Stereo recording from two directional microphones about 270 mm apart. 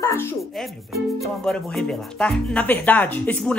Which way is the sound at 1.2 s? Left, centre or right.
Centre.